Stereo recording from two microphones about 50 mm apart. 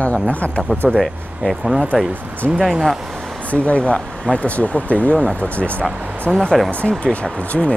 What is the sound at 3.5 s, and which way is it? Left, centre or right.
Speech, left.